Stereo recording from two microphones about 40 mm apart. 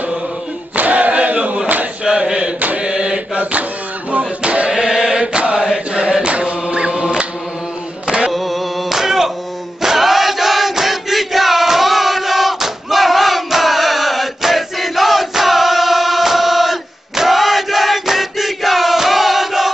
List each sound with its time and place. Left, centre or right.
0.7 s a sound: right
2.0 s chant: centre
2.8 s mantra: centre
4.4 s chant: right
4.6 s chant: centre
5.1 s mantra: right
8.3 s male singing: centre
9.8 s crowd: centre
17.2 s a sound: centre